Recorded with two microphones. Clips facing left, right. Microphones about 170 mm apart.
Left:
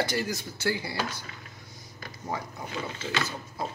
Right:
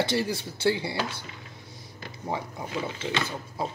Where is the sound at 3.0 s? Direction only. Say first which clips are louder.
Right 2 dB; 20° right (ahead or behind).